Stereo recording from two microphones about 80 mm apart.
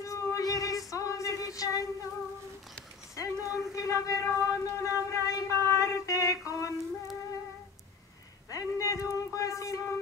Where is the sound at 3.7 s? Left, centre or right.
Left.